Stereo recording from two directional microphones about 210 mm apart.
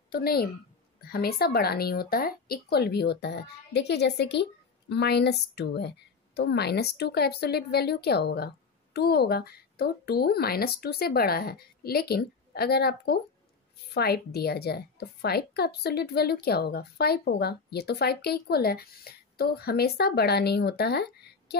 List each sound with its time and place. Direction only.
0.1 s a woman's voice: 45° left (ahead or behind)